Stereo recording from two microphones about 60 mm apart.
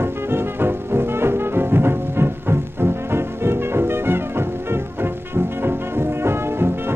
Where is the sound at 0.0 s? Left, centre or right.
Right.